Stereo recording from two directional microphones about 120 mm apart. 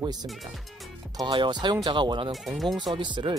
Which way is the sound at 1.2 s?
40° right (ahead or behind).